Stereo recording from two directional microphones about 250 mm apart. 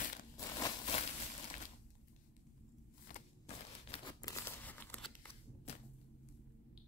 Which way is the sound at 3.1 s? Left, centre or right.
Left.